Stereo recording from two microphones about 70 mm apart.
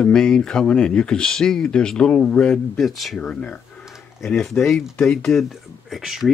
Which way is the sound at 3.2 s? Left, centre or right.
Centre.